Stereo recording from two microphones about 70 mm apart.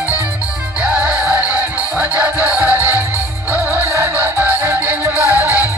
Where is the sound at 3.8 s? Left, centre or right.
Right.